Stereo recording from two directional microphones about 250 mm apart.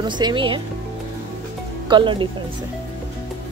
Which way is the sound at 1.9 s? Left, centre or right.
Centre.